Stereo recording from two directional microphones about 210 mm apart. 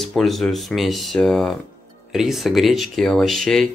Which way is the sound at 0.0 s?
Centre (ahead or behind).